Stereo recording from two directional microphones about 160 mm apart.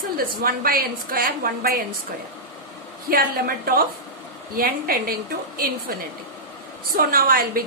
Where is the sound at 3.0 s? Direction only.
65° right (ahead or behind).